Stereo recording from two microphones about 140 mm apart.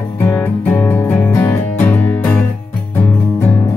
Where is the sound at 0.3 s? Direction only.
15° left (ahead or behind).